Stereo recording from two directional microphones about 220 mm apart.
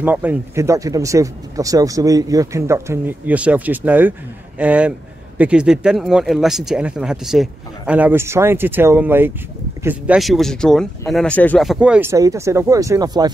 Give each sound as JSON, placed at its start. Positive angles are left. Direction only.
{"t": 0.0, "sound": "speech", "side_deg": -10}